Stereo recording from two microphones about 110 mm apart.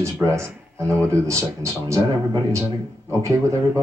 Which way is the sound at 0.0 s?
25° right (ahead or behind).